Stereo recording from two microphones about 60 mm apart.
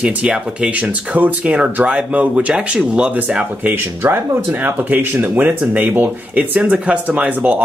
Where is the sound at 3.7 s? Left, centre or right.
Right.